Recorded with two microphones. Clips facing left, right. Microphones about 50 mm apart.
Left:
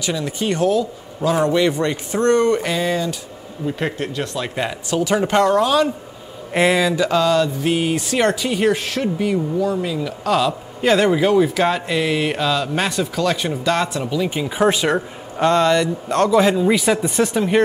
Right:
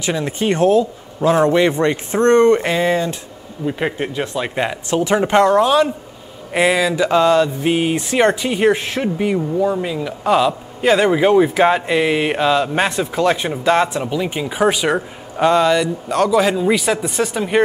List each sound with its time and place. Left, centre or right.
0.0 s mantra: right
3.6 s speech: centre
4.8 s mantra: right
6.5 s mantra: centre
14.4 s speech: centre